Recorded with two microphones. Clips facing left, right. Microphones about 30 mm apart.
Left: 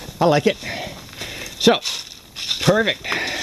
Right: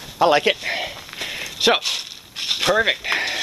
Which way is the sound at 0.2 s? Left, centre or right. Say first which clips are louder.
Even; right.